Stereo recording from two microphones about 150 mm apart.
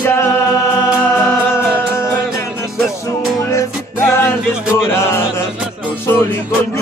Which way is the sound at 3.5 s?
20° left (ahead or behind).